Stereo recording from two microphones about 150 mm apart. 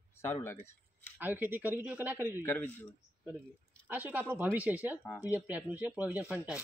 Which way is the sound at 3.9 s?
10° right (ahead or behind).